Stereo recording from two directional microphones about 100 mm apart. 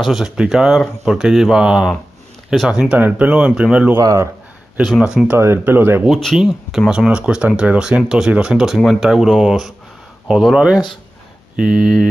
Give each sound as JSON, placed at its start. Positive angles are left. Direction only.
{"t": 0.0, "sound": "speech", "side_deg": 0}
{"t": 3.9, "sound": "speech", "side_deg": -30}
{"t": 4.9, "sound": "speech", "side_deg": -5}
{"t": 5.3, "sound": "speech", "side_deg": -25}
{"t": 6.0, "sound": "speech", "side_deg": 0}